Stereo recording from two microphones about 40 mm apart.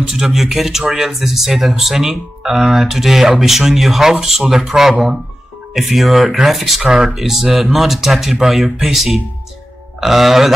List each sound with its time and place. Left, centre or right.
0.1 s speech: centre